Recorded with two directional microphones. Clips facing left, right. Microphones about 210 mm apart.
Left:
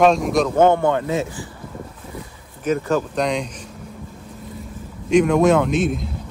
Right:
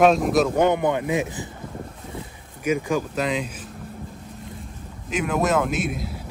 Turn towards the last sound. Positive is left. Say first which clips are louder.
# left 5 dB
turn(degrees=-5)  # may be behind; listen again after turning